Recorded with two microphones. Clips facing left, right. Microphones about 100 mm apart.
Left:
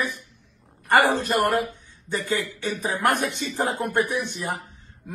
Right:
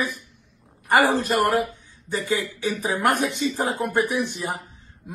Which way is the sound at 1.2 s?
15° right (ahead or behind).